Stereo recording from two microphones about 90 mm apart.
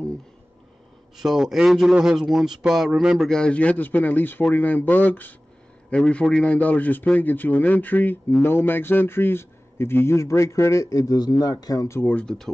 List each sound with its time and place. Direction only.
1.1 s speech: 5° right (ahead or behind); by 5.3 s 20° left (ahead or behind)
5.9 s a man's voice: 10° left (ahead or behind); by 12.0 s 40° left (ahead or behind)
12.0 s speech: 15° left (ahead or behind)